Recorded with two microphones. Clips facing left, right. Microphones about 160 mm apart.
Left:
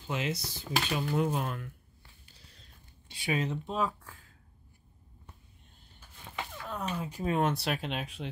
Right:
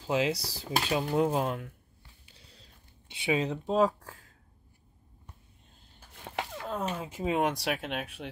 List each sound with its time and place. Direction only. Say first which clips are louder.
0.0 s speech: right 7 dB; 90° right
0.3 s speech: right 2 dB; 35° right (ahead or behind)
3.1 s speech: right 3 dB; 20° right (ahead or behind)
3.4 s speech: right 6 dB; 35° right (ahead or behind)
6.6 s speech: right 1 dB; 25° right (ahead or behind); by 8.3 s 5° right (ahead or behind)